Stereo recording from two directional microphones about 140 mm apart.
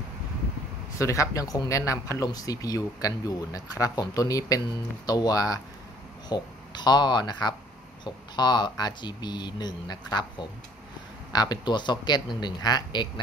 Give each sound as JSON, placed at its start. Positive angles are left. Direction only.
{"t": 0.9, "sound": "speech", "side_deg": 20}